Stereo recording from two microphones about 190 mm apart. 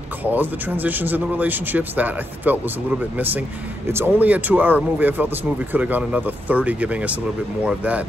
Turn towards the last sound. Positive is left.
turn(degrees=-5)  # may be behind; listen again after turning